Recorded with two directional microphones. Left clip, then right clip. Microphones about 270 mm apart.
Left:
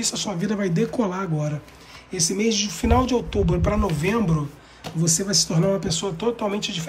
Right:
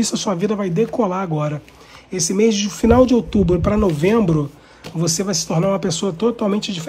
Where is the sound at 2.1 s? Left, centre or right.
Centre.